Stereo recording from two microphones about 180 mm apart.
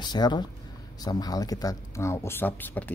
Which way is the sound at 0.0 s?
25° left (ahead or behind).